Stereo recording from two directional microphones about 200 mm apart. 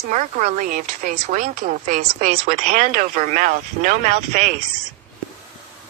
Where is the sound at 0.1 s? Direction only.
35° right (ahead or behind).